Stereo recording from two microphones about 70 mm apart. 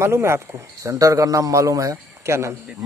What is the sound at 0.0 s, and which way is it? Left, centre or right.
Speech, right.